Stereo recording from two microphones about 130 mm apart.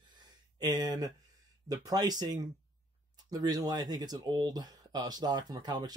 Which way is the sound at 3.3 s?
30° right (ahead or behind).